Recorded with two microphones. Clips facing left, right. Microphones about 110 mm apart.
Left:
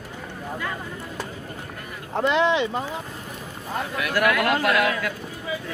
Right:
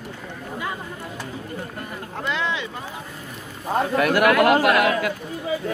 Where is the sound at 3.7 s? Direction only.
40° right (ahead or behind).